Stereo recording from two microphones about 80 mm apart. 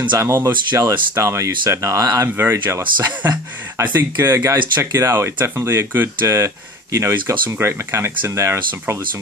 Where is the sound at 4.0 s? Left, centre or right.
Right.